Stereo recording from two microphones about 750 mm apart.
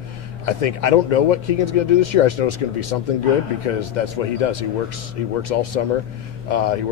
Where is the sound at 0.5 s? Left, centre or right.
Left.